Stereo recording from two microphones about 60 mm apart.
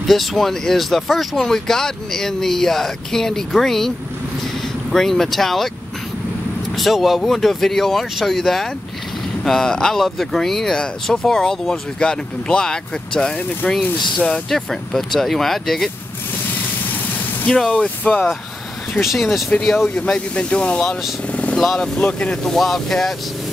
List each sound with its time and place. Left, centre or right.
0.0 s speech: centre
4.9 s speech: centre
6.7 s speech: centre
12.0 s speech: centre
17.7 s speech: left
19.1 s speech: centre
20.1 s speech: centre
21.3 s vehicle: left
21.5 s speech: centre
22.4 s speech: centre